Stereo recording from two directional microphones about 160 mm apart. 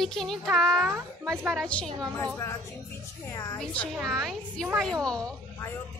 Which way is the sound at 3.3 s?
20° left (ahead or behind).